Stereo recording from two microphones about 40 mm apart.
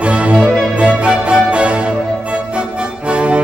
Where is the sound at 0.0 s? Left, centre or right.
Right.